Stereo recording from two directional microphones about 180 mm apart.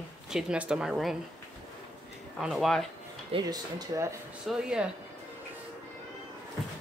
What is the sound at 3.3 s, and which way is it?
Speech, 20° right (ahead or behind).